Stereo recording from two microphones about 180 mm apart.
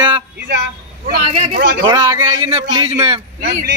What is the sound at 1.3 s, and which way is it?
Speech, 35° right (ahead or behind).